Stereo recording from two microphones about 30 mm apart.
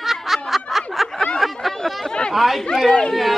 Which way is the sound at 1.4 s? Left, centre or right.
Centre.